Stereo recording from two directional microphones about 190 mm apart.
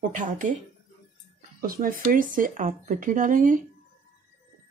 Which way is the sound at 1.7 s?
50° right (ahead or behind).